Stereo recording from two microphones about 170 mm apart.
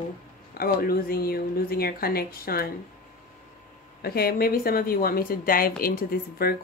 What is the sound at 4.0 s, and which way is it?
Speech, 65° left (ahead or behind).